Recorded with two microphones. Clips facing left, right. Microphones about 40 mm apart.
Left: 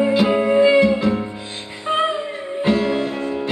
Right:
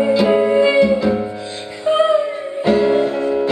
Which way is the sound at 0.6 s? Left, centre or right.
Centre.